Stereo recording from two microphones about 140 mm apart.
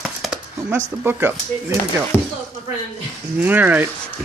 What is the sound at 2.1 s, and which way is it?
Speech, 15° left (ahead or behind).